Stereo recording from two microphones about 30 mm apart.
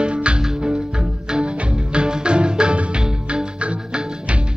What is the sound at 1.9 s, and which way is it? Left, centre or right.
Music, right.